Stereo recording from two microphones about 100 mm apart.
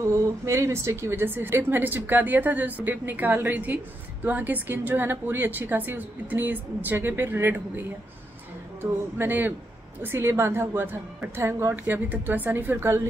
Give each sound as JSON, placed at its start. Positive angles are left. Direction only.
{"t": 0.5, "sound": "a woman's voice", "side_deg": -30}
{"t": 9.2, "sound": "a woman's voice", "side_deg": -20}